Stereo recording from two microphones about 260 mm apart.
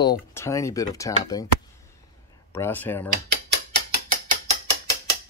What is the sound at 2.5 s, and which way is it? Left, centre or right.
Speech, centre.